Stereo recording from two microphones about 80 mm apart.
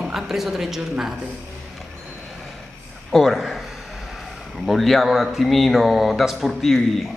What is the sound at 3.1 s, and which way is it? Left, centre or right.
Speech, centre.